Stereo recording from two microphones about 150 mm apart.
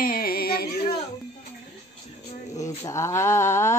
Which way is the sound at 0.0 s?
75° left (ahead or behind).